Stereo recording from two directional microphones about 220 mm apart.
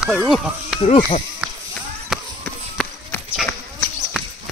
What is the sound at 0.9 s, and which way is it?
Speech, 35° left (ahead or behind).